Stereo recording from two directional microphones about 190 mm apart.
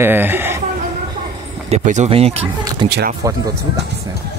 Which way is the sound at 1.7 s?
35° right (ahead or behind).